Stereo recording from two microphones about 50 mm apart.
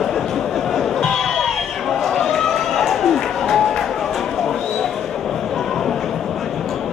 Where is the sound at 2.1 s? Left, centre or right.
Centre.